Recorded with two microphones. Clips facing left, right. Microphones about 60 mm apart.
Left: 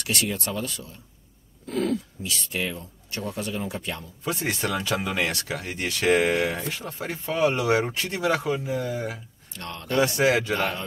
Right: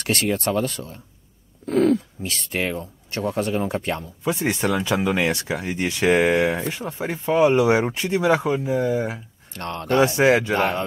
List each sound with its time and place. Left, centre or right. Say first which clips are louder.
0.0 s speech: right 6 dB; right
4.2 s speech: right 4 dB; centre
9.5 s speech: right 7 dB; right
9.9 s speech: right 4 dB; right